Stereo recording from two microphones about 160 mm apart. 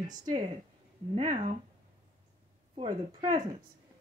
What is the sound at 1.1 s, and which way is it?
Speech, 45° right (ahead or behind).